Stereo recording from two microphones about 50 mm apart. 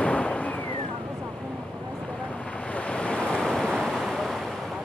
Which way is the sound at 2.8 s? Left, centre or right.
Left.